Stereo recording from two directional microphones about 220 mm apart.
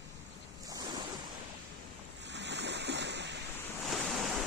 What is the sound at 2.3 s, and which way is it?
Waves, 50° right (ahead or behind).